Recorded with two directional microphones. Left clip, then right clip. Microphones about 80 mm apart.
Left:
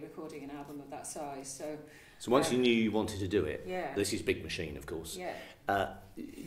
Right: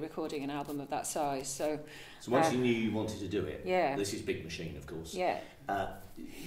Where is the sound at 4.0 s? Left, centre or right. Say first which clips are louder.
Left 3 dB; left.